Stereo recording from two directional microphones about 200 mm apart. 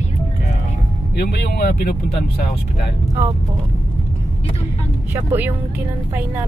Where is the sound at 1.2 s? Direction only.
55° left (ahead or behind).